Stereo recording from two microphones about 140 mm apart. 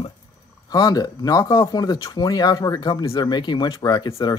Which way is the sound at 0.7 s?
30° left (ahead or behind).